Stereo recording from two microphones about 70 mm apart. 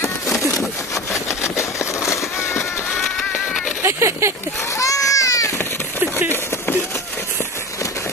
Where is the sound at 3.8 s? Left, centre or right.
Right.